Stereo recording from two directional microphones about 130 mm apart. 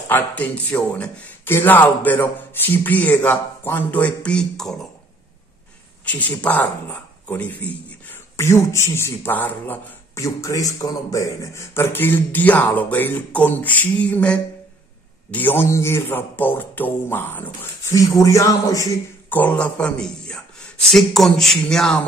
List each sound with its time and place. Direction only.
0.1 s speech: 10° left (ahead or behind)
6.0 s speech: 10° left (ahead or behind)
18.2 s a man's voice: 25° left (ahead or behind)
19.2 s speech: 15° left (ahead or behind)